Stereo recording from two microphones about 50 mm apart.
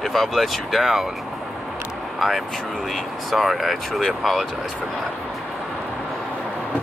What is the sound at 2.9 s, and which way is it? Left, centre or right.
Speech, centre.